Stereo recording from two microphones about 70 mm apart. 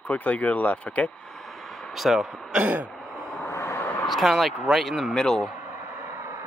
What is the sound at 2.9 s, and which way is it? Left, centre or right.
Sigh, centre.